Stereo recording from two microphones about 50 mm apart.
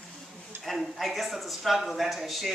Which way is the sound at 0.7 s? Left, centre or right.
Centre.